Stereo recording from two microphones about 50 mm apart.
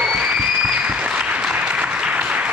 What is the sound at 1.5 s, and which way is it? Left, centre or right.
Applause, right.